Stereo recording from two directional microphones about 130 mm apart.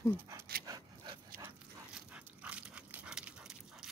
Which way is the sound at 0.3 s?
25° right (ahead or behind).